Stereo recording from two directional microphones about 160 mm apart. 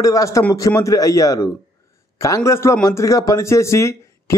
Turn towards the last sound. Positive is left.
turn(degrees=20)  # may be behind; listen again after turning